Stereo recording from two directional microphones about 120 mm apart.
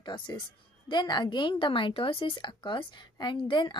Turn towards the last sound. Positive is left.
turn(degrees=40)  # may be behind; listen again after turning